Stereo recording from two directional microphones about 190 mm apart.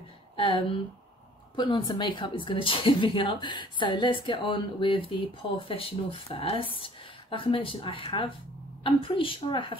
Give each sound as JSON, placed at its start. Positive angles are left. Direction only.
{"t": 1.6, "sound": "a woman's voice", "side_deg": 25}